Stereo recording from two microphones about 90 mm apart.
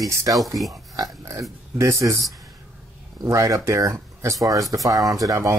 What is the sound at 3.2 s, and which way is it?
Speech, 35° right (ahead or behind).